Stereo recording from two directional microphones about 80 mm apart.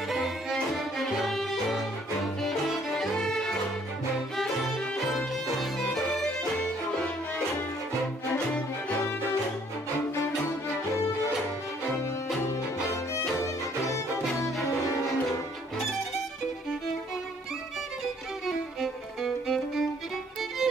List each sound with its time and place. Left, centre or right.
0.1 s music: centre
5.1 s music: centre
13.4 s violin: left
18.8 s music: centre